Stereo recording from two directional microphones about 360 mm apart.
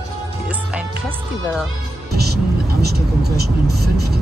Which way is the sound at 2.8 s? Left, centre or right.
Right.